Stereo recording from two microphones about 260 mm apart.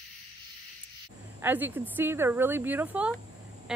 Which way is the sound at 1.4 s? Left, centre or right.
Centre.